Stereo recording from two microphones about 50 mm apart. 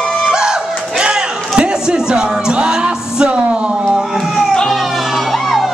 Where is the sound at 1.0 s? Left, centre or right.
Centre.